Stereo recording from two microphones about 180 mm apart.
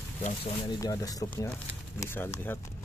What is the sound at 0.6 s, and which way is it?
A man's voice, 20° left (ahead or behind).